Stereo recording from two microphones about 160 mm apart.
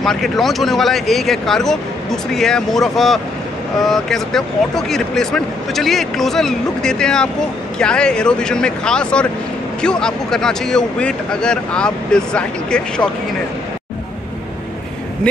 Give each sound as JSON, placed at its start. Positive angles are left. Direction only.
{"t": 0.0, "sound": "speech", "side_deg": 0}